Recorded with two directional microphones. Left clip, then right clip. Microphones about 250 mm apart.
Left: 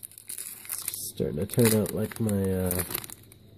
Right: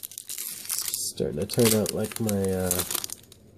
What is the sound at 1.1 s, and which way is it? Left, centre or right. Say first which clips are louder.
Speech: right 1 dB; centre.